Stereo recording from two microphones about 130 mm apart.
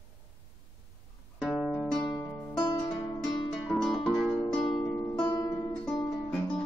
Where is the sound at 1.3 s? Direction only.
Centre (ahead or behind).